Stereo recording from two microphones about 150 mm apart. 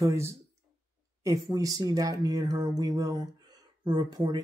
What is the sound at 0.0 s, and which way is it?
Speech, 20° right (ahead or behind).